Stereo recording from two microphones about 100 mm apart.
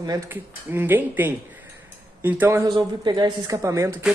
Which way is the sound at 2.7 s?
45° right (ahead or behind).